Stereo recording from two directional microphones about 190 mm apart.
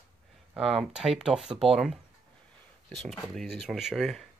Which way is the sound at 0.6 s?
Centre (ahead or behind).